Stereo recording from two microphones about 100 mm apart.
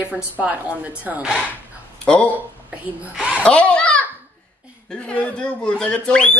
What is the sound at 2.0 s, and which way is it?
Speech, 15° left (ahead or behind).